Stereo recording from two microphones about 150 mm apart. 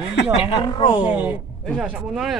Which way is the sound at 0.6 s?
30° left (ahead or behind).